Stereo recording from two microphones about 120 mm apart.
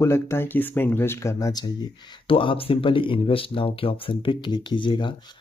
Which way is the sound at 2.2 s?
50° left (ahead or behind).